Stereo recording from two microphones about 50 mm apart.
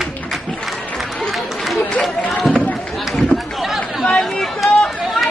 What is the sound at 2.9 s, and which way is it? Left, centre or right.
Run, centre.